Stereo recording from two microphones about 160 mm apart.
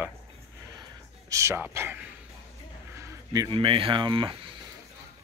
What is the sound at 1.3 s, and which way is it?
Speech, 20° right (ahead or behind).